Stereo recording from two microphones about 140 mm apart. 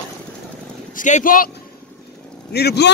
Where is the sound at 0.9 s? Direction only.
65° left (ahead or behind).